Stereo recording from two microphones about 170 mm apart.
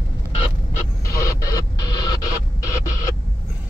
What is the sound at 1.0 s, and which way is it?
Radio, 20° left (ahead or behind).